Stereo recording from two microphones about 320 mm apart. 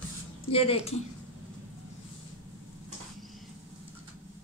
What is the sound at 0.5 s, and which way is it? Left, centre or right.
Speech, centre.